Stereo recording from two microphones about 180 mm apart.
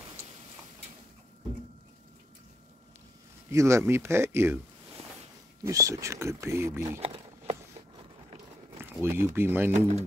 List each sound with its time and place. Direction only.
3.4 s speech: 15° right (ahead or behind)
5.6 s speech: 20° right (ahead or behind)
7.0 s a sound: 30° right (ahead or behind)
8.7 s speech: 10° right (ahead or behind)